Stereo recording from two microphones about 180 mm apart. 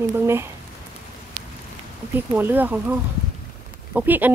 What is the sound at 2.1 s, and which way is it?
Speech, 10° right (ahead or behind).